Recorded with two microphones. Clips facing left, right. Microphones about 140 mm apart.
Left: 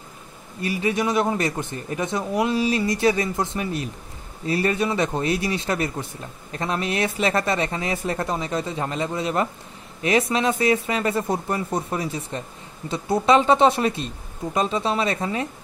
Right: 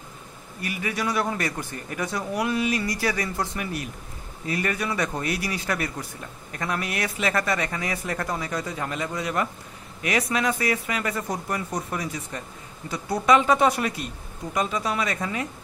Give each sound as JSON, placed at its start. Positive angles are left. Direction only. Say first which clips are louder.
{"t": 0.6, "sound": "speech", "louder": "left 6 dB", "side_deg": 25}